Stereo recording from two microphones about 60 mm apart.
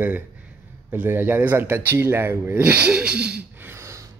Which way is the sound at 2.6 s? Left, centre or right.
Right.